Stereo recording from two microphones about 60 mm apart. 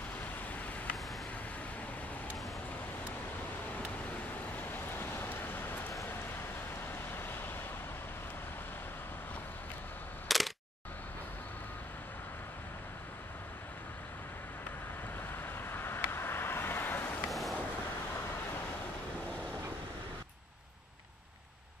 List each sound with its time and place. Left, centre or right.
4.6 s vehicle: left
10.2 s camera: centre
15.3 s vehicle: left
17.3 s vehicle: centre